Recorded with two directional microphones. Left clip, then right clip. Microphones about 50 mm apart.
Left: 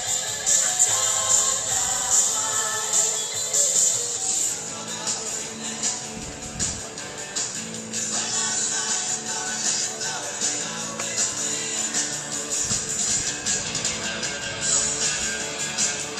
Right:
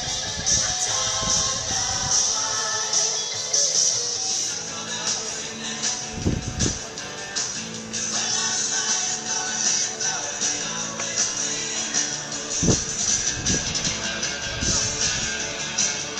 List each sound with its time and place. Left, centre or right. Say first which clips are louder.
0.5 s music: even; centre
3.5 s music: right 2 dB; left
8.1 s music: right 3 dB; right; by 15.3 s centre